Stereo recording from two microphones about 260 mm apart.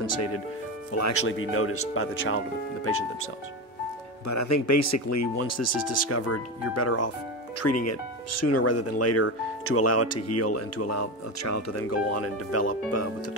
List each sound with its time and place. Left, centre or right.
0.0 s speech: left
1.2 s speech: left
4.3 s speech: left
5.4 s speech: left